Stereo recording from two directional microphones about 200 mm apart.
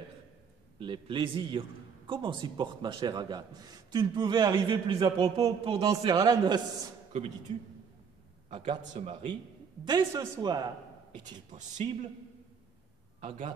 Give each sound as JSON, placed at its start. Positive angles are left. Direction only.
{"t": 0.7, "sound": "a man's voice", "side_deg": -25}
{"t": 8.5, "sound": "a man's voice", "side_deg": -25}
{"t": 11.3, "sound": "speech", "side_deg": -35}